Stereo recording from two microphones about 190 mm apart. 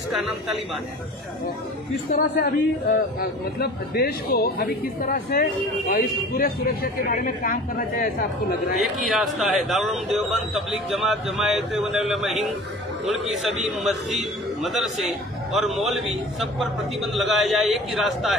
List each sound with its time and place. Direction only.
0.1 s a man's voice: centre (ahead or behind)
2.0 s a man's voice: 50° left (ahead or behind)
8.7 s a man's voice: centre (ahead or behind)
13.7 s a man's voice: centre (ahead or behind)